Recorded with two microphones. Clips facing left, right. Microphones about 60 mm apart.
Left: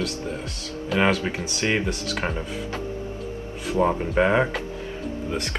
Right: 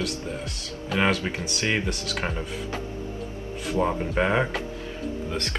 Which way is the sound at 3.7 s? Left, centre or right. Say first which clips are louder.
Left 3 dB; centre.